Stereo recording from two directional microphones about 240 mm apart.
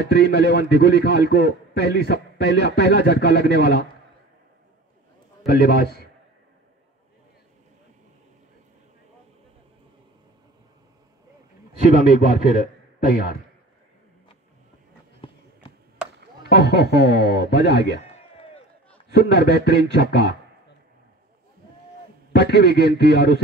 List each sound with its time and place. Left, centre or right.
0.0 s a man's voice: left
5.5 s a man's voice: left
13.0 s a man's voice: left
15.2 s run: left
16.0 s chop: centre
16.4 s a man's voice: left
18.0 s a sound: left
19.1 s a man's voice: left
22.3 s a man's voice: left